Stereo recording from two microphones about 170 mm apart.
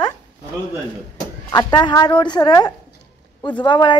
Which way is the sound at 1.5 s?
20° left (ahead or behind).